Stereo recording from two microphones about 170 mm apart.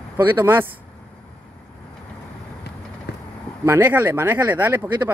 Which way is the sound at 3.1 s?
80° left.